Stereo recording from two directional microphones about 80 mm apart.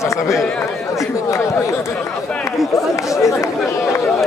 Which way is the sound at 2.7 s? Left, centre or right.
Left.